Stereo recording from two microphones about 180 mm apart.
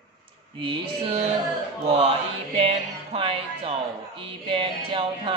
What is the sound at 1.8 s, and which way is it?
Music, 30° right (ahead or behind).